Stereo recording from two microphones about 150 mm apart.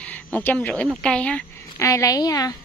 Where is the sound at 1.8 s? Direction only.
20° left (ahead or behind).